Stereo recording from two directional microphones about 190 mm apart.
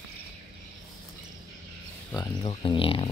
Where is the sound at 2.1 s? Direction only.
20° left (ahead or behind).